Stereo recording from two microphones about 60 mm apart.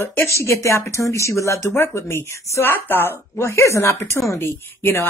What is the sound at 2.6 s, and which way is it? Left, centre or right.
Speech, left.